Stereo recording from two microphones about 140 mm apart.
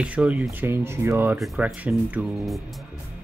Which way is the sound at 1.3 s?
5° right (ahead or behind).